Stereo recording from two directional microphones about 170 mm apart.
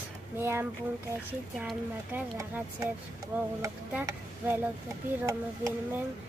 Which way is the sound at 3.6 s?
15° right (ahead or behind).